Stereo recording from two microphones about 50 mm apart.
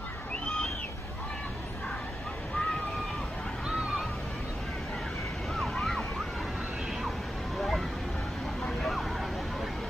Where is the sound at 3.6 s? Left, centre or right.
Centre.